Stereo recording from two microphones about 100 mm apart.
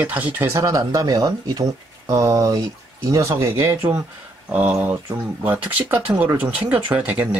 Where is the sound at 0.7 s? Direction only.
35° right (ahead or behind).